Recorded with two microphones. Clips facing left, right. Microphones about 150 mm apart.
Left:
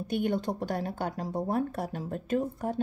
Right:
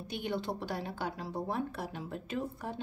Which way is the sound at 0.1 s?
50° left (ahead or behind).